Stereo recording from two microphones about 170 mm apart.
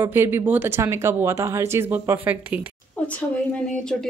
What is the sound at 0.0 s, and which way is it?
A woman's voice, 15° right (ahead or behind).